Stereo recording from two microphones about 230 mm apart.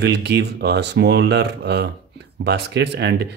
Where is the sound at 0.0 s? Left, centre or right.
Right.